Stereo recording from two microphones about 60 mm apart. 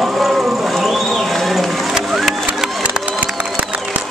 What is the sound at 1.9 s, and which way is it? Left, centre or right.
Music, centre.